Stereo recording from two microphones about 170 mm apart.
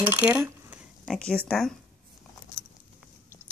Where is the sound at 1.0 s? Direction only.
5° left (ahead or behind).